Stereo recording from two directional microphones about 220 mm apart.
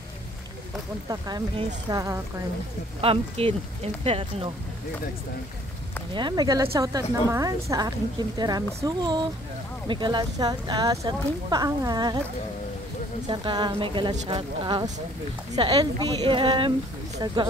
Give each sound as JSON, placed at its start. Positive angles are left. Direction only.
{"t": 1.0, "sound": "a woman's voice", "side_deg": -15}
{"t": 6.1, "sound": "a woman's voice", "side_deg": -20}
{"t": 13.3, "sound": "a woman's voice", "side_deg": -20}